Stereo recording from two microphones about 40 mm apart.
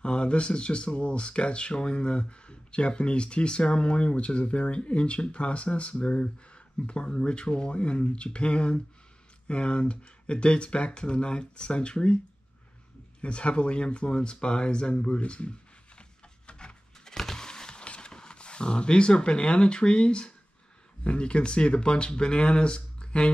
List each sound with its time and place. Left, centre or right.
0.0 s speech: left
13.2 s speech: left
16.0 s wood: left
17.8 s speech: left